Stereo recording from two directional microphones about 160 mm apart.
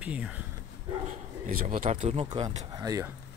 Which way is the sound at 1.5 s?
65° right (ahead or behind).